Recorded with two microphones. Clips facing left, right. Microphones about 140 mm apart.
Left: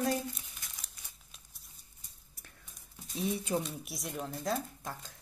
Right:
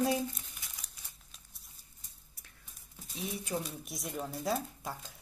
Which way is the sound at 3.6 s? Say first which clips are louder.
Left 2 dB; centre (ahead or behind).